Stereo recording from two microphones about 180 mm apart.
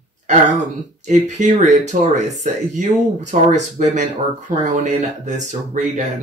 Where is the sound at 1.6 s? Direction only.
40° right (ahead or behind).